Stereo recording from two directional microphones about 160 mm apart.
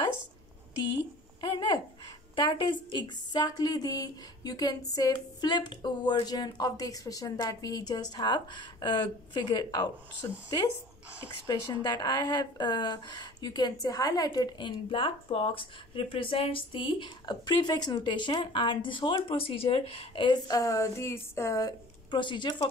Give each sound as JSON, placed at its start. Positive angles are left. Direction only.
{"t": 1.4, "sound": "speech", "side_deg": 25}
{"t": 11.4, "sound": "speech", "side_deg": 25}